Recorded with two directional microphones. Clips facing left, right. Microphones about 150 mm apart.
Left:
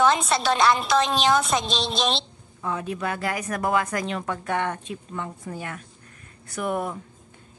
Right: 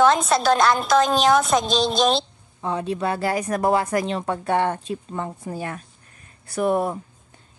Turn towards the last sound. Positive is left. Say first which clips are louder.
# right 6 dB
turn(degrees=-30)  # may be behind; listen again after turning